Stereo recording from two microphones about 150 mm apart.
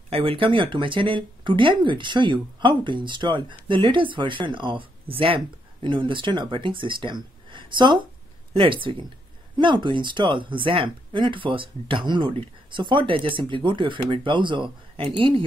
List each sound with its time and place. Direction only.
0.1 s speech: 35° right (ahead or behind)